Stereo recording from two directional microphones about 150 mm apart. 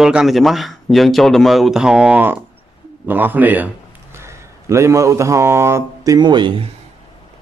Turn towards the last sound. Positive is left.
turn(degrees=-30)  # may be behind; listen again after turning